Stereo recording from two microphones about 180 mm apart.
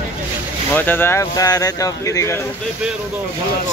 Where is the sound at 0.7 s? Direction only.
10° left (ahead or behind).